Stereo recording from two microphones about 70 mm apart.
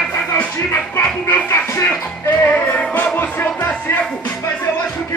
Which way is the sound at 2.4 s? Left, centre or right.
Left.